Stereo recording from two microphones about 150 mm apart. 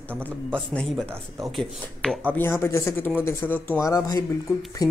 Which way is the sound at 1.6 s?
Centre (ahead or behind).